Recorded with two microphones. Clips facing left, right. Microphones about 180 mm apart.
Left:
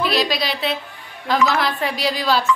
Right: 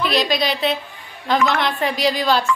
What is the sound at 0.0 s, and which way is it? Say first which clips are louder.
A woman's voice: right 1 dB; 5° left (ahead or behind).